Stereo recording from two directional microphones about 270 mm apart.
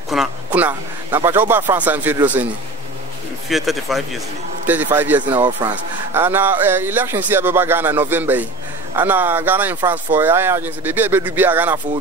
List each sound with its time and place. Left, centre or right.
0.1 s a man's voice: centre
3.4 s speech: centre